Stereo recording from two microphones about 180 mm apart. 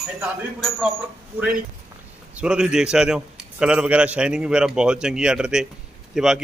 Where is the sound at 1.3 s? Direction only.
5° right (ahead or behind).